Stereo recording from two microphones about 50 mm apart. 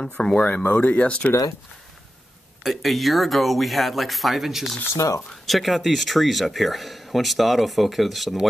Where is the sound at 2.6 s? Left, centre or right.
Centre.